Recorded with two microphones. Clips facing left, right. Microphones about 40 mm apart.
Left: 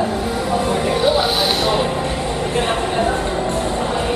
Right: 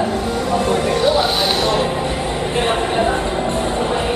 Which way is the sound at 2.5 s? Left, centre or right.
Centre.